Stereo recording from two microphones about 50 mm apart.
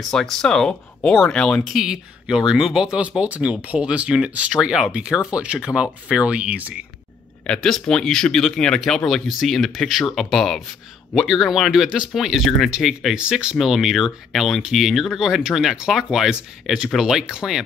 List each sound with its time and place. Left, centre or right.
0.1 s speech: centre
1.7 s speech: centre
7.4 s speech: centre
13.1 s speech: centre
13.6 s speech: centre